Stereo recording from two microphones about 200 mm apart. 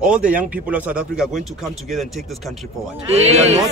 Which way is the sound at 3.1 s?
35° right (ahead or behind).